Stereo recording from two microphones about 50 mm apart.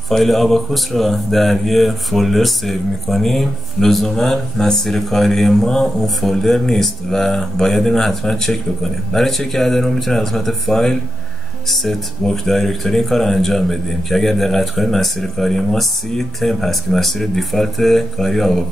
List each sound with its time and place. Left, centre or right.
0.1 s speech: centre